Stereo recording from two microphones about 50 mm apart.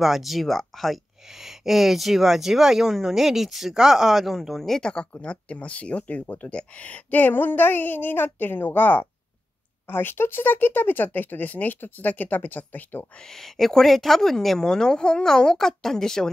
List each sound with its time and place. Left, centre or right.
0.0 s speech: centre
5.2 s speech: left
13.3 s speech: centre